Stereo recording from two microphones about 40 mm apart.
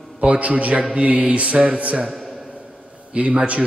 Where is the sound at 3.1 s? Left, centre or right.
Right.